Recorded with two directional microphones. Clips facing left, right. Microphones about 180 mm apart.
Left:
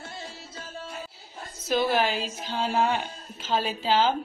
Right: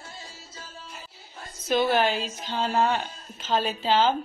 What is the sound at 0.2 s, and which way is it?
Music, 65° left (ahead or behind).